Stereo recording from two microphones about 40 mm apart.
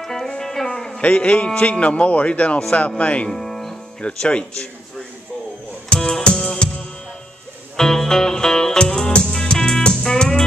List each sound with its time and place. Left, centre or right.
0.0 s music: centre
1.0 s speech: left
3.3 s music: centre
4.0 s speech: left
5.9 s music: centre
7.7 s music: centre